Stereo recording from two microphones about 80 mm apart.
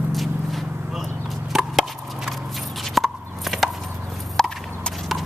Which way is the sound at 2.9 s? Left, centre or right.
Centre.